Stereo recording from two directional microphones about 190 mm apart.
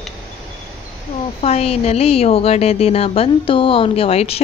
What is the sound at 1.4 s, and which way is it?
A woman's voice, 35° left (ahead or behind).